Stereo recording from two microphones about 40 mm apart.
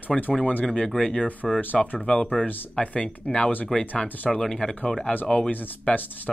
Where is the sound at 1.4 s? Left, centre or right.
Centre.